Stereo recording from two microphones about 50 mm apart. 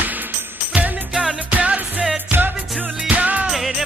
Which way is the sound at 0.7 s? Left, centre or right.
Right.